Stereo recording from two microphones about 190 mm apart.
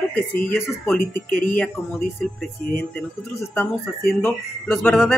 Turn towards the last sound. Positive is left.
turn(degrees=5)  # may be behind; listen again after turning